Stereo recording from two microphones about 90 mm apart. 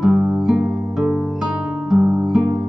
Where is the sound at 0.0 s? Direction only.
5° right (ahead or behind).